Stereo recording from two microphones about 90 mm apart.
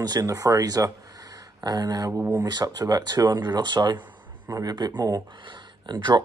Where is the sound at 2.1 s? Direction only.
30° right (ahead or behind).